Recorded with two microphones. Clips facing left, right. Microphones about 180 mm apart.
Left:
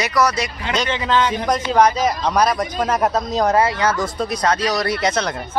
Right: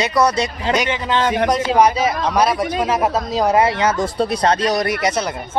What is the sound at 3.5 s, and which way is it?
Speech, 20° right (ahead or behind).